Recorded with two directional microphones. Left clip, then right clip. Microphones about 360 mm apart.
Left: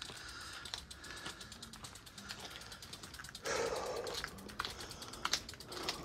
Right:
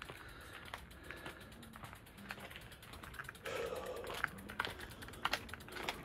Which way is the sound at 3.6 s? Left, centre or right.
Centre.